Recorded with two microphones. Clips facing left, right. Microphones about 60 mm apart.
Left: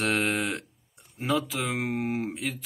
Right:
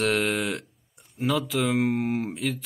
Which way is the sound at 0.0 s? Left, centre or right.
Left.